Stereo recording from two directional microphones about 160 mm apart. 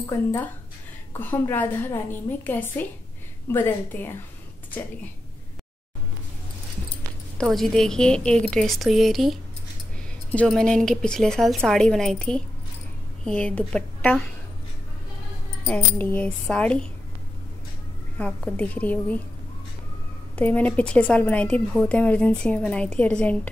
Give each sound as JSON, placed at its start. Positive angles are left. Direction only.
{"t": 0.0, "sound": "a woman's voice", "side_deg": 15}
{"t": 7.5, "sound": "a woman's voice", "side_deg": 0}
{"t": 15.6, "sound": "a woman's voice", "side_deg": 10}
{"t": 18.1, "sound": "a woman's voice", "side_deg": 10}
{"t": 20.3, "sound": "a woman's voice", "side_deg": 10}